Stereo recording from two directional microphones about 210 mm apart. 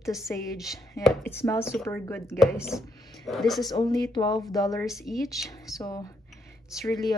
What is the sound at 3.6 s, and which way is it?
Speech, 20° left (ahead or behind).